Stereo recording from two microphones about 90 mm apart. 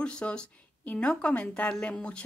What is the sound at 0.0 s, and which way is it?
A woman's voice, 10° left (ahead or behind).